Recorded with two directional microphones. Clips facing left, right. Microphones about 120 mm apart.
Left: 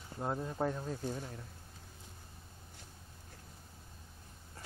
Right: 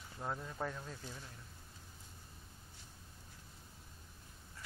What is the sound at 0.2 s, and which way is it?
Speech, 30° left (ahead or behind).